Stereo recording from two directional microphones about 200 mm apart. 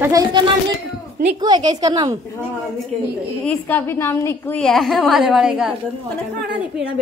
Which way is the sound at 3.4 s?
10° left (ahead or behind).